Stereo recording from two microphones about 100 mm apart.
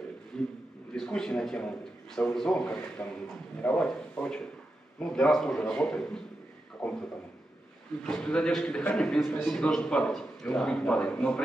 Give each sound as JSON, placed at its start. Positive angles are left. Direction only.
{"t": 0.3, "sound": "a man's voice", "side_deg": 5}
{"t": 8.0, "sound": "a man's voice", "side_deg": 5}